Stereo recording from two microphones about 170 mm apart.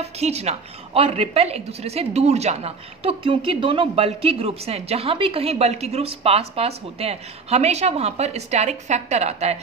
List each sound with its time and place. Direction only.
0.0 s a woman's voice: 40° right (ahead or behind)